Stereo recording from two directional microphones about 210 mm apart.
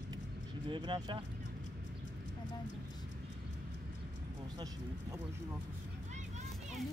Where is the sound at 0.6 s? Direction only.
20° right (ahead or behind).